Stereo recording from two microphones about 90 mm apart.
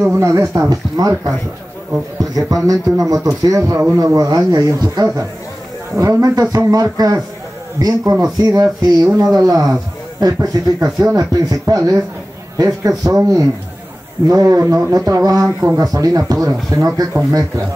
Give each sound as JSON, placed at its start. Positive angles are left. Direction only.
{"t": 0.0, "sound": "speech", "side_deg": -35}
{"t": 6.2, "sound": "speech", "side_deg": -40}